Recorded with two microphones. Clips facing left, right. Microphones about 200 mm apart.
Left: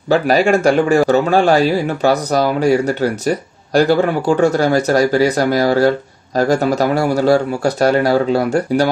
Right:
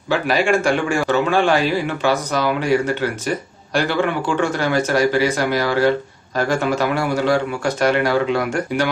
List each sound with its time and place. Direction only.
0.1 s speech: 40° left (ahead or behind)